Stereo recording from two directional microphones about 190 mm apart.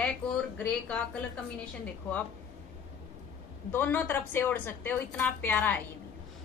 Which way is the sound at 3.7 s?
10° left (ahead or behind).